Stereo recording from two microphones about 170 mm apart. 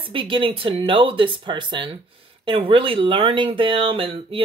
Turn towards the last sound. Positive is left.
turn(degrees=-35)  # may be behind; listen again after turning